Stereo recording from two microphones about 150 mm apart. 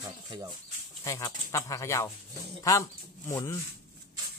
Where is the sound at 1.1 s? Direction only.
20° left (ahead or behind).